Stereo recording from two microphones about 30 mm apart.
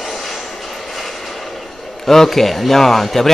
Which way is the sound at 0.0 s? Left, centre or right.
Centre.